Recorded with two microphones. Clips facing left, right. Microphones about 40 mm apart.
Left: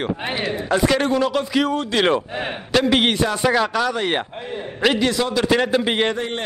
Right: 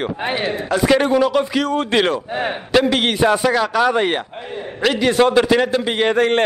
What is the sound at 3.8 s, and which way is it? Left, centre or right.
Speech, centre.